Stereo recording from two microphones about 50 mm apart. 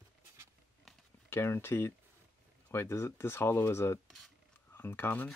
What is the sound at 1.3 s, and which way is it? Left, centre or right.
Speech, left.